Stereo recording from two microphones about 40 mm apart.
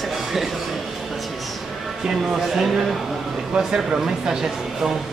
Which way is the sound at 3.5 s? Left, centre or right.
Right.